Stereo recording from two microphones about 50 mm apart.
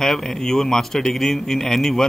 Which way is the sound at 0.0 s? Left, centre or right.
Centre.